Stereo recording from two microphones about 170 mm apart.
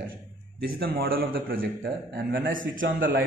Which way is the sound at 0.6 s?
65° right (ahead or behind).